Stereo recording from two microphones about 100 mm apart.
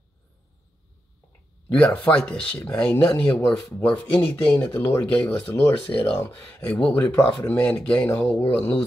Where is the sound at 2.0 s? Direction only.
15° left (ahead or behind).